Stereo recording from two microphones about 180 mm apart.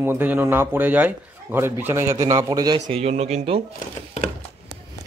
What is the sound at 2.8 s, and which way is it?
Speech, 35° right (ahead or behind).